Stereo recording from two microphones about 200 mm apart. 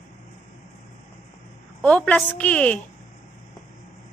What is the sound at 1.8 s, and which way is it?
A woman's voice, 5° left (ahead or behind).